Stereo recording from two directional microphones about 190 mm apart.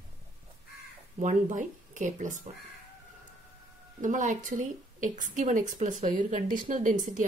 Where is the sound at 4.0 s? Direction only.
40° right (ahead or behind).